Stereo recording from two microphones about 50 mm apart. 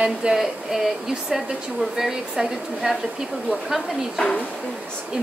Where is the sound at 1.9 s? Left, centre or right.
Centre.